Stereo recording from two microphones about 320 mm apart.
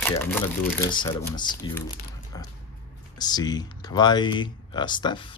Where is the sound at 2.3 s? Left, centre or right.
Centre.